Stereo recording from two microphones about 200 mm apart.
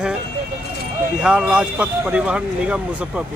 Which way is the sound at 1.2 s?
5° right (ahead or behind).